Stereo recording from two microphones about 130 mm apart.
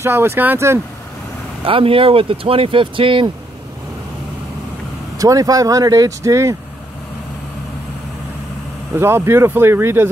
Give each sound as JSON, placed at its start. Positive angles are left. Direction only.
{"t": 0.0, "sound": "speech", "side_deg": -20}
{"t": 1.7, "sound": "speech", "side_deg": -45}
{"t": 5.2, "sound": "speech", "side_deg": -25}
{"t": 8.9, "sound": "speech", "side_deg": -20}